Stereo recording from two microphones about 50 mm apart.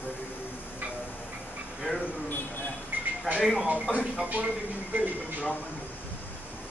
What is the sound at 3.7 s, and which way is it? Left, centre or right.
Speech, right.